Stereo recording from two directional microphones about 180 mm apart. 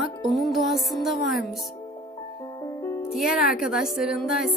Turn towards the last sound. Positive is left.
turn(degrees=0)  # may be behind; listen again after turning